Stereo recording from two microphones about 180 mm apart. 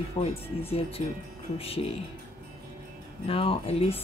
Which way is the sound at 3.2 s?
30° left (ahead or behind).